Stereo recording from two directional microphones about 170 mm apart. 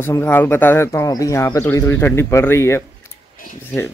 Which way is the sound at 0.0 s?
15° left (ahead or behind).